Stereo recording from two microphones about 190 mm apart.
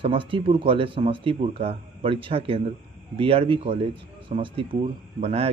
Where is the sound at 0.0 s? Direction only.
30° right (ahead or behind).